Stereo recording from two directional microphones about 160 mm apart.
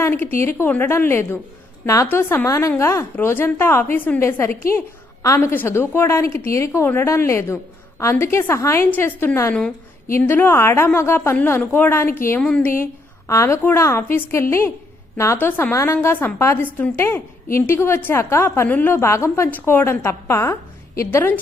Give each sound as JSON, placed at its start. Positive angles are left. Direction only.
{"t": 0.0, "sound": "a woman's voice", "side_deg": 15}